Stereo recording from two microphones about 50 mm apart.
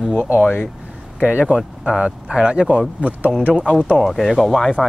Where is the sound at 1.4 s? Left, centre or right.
Centre.